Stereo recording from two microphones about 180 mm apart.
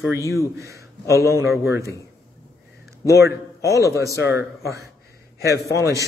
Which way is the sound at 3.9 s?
15° right (ahead or behind).